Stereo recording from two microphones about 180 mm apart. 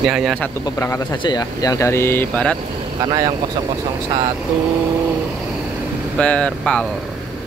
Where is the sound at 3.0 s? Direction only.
25° right (ahead or behind).